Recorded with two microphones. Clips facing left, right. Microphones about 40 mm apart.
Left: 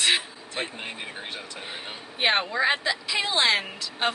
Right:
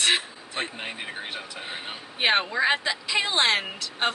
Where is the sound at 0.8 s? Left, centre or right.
Centre.